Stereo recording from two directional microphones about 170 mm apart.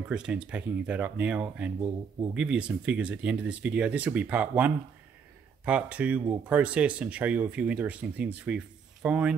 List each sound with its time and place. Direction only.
0.1 s speech: 5° right (ahead or behind)